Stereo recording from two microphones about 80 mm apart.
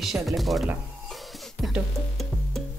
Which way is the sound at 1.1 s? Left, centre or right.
Centre.